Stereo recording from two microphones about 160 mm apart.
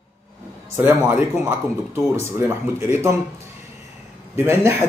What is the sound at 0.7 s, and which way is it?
Speech, 10° right (ahead or behind).